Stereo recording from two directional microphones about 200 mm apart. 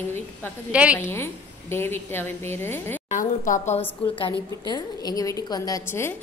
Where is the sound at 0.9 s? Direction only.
10° left (ahead or behind).